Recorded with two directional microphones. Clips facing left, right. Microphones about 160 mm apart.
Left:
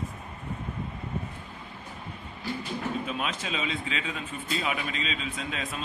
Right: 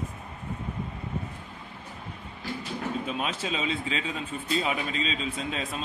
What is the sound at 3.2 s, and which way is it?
Speech, 30° right (ahead or behind).